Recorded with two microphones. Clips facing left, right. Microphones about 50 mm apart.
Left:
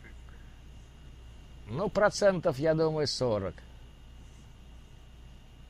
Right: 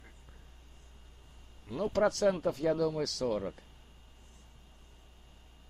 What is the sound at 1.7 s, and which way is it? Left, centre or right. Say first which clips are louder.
Speech: left 3 dB; left.